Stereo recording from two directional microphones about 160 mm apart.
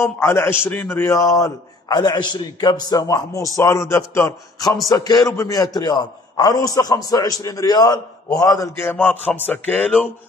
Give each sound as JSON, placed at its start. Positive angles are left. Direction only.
{"t": 0.0, "sound": "a man's voice", "side_deg": 15}